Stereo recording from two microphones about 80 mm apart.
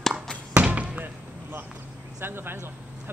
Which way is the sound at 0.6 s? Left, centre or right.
Centre.